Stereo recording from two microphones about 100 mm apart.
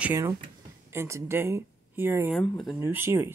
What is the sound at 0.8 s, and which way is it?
Speech, 25° right (ahead or behind).